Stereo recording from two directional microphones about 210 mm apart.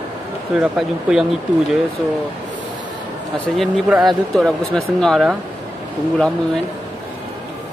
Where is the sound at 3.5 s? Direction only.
Centre (ahead or behind).